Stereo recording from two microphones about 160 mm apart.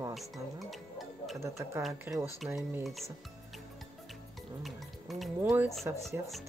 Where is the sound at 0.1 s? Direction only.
Centre (ahead or behind).